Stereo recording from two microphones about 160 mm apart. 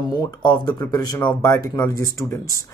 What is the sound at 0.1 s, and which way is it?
Speech, 25° left (ahead or behind).